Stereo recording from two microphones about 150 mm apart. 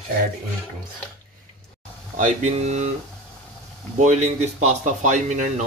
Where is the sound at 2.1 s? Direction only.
50° right (ahead or behind).